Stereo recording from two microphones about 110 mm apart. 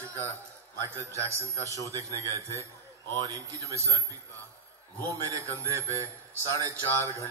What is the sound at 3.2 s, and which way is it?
Speech, 30° right (ahead or behind).